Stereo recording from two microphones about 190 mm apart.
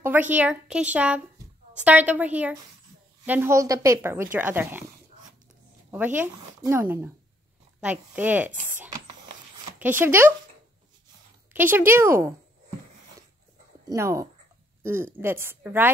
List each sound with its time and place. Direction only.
0.0 s speech: 10° right (ahead or behind)
5.9 s speech: 10° right (ahead or behind)
11.5 s speech: 10° right (ahead or behind)
13.8 s speech: 15° right (ahead or behind)